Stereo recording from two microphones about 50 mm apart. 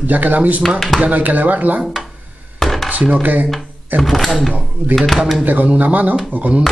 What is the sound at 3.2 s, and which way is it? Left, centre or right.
Speech, right.